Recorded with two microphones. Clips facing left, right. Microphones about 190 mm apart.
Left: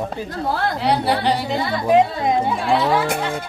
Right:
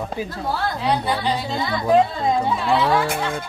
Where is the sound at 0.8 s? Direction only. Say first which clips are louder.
Left 3 dB; 70° left (ahead or behind).